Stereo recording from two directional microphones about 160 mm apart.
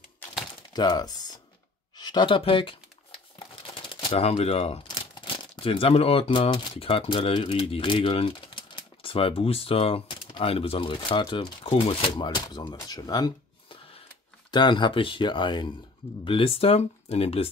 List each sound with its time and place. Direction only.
0.7 s speech: 25° left (ahead or behind)
2.0 s a sound: 25° left (ahead or behind)
3.7 s speech: 35° left (ahead or behind)